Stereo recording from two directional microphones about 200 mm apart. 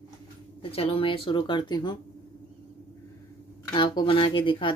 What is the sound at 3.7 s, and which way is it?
Speech, 20° left (ahead or behind).